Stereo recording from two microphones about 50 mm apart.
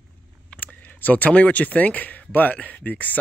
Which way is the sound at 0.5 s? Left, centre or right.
Left.